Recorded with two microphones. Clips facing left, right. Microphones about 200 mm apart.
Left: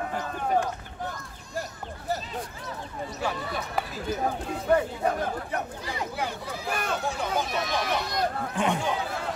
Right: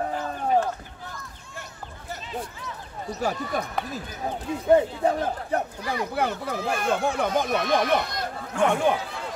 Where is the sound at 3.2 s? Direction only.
45° right (ahead or behind).